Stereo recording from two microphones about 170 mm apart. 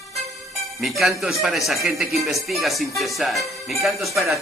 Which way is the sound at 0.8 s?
Centre (ahead or behind).